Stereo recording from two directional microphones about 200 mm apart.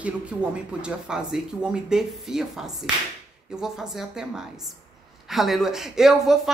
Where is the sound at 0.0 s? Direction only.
5° right (ahead or behind).